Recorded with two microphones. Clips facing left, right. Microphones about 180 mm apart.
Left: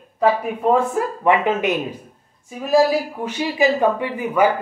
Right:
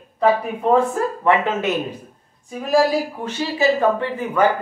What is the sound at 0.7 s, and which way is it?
A man's voice, 15° left (ahead or behind).